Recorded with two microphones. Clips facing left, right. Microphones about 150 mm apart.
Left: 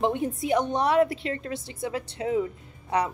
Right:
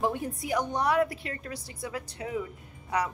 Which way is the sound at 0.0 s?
25° left (ahead or behind).